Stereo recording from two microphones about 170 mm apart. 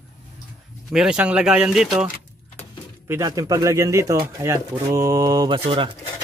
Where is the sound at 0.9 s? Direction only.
5° right (ahead or behind).